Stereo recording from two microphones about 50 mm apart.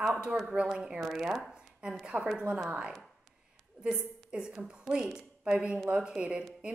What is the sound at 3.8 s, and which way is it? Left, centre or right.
A woman's voice, right.